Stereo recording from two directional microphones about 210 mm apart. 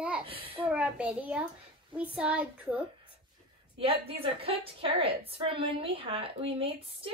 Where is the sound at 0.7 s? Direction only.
5° right (ahead or behind).